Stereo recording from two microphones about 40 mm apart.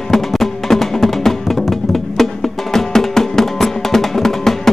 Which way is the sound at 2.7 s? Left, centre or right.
Centre.